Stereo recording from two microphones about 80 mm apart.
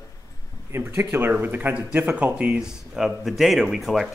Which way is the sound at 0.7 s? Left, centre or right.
Right.